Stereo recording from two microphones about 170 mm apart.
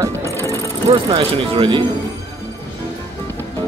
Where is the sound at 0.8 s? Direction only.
30° right (ahead or behind).